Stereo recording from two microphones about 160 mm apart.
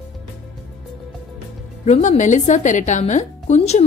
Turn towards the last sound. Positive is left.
turn(degrees=45)  # may be behind; listen again after turning